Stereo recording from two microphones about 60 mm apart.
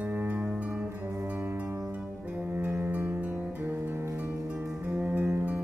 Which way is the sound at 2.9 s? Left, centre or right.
Right.